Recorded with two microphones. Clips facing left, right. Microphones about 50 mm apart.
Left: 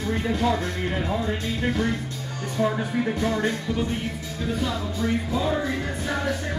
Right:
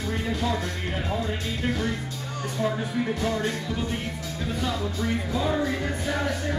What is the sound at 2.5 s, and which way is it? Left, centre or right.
Speech, centre.